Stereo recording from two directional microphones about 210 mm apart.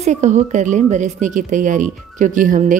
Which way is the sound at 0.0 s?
35° right (ahead or behind).